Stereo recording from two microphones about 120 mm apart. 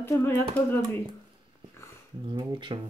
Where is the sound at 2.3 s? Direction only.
40° right (ahead or behind).